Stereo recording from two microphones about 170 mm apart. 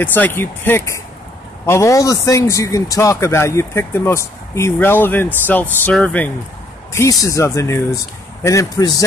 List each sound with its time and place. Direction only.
0.0 s speech: 10° left (ahead or behind)